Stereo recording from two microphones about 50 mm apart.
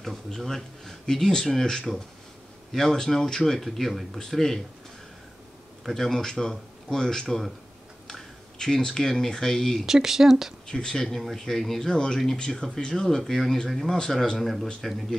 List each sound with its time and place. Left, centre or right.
0.0 s speech: centre
5.9 s speech: centre
9.8 s speech: centre
10.7 s speech: centre